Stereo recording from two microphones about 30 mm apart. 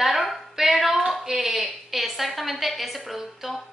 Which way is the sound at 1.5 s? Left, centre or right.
Centre.